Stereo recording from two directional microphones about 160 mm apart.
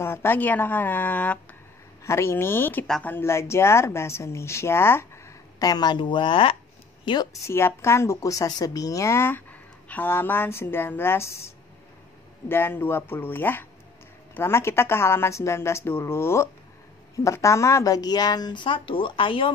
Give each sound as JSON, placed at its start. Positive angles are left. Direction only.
{"t": 0.0, "sound": "a woman's voice", "side_deg": 15}
{"t": 7.4, "sound": "speech", "side_deg": 15}